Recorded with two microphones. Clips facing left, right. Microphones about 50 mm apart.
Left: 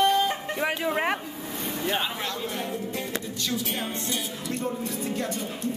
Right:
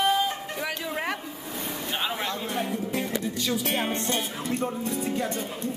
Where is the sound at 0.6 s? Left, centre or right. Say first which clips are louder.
Left 5 dB; left.